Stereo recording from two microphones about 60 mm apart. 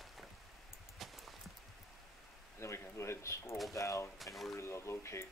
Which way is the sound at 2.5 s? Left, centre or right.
Left.